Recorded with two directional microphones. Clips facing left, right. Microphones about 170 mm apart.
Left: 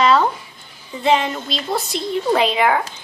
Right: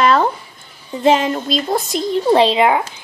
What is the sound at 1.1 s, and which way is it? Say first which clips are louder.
Child singing: right 4 dB; 45° right (ahead or behind).